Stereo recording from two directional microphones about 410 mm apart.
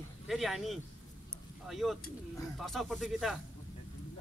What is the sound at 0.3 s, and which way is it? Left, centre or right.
Speech, centre.